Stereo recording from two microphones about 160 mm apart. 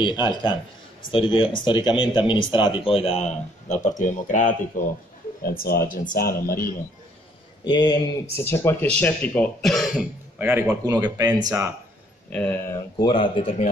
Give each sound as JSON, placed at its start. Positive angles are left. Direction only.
{"t": 0.0, "sound": "a man's voice", "side_deg": 25}
{"t": 5.4, "sound": "speech", "side_deg": 65}
{"t": 7.6, "sound": "a man's voice", "side_deg": 30}
{"t": 8.4, "sound": "speech", "side_deg": 15}
{"t": 10.4, "sound": "speech", "side_deg": -20}
{"t": 12.3, "sound": "speech", "side_deg": 10}
{"t": 13.0, "sound": "speech", "side_deg": 30}